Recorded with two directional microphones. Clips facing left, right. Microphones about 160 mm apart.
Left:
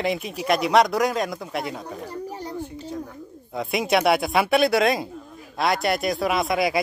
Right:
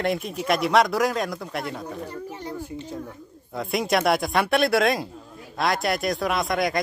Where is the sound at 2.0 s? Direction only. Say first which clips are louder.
Left 2 dB; 35° left (ahead or behind).